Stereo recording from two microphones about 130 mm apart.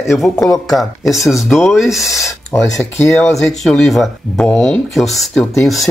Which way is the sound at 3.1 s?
5° left (ahead or behind).